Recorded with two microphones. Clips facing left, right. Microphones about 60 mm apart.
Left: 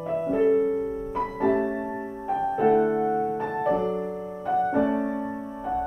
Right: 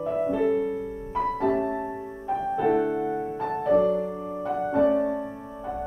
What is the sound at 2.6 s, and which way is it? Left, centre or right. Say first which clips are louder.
Music: left 4 dB; left.